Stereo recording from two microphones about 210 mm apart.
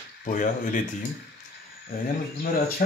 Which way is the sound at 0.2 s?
40° left (ahead or behind).